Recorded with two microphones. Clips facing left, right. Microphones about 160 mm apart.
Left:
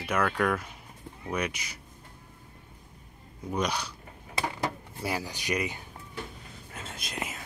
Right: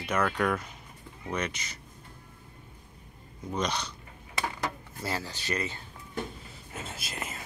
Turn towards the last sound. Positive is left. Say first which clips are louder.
# left 2 dB
turn(degrees=0)  # may be behind; listen again after turning